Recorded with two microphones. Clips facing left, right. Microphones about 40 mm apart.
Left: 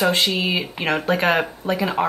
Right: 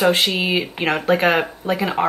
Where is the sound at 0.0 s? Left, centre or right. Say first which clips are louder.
Right 2 dB; centre.